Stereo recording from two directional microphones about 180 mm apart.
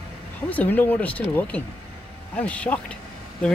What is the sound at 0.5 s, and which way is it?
Speech, 10° left (ahead or behind).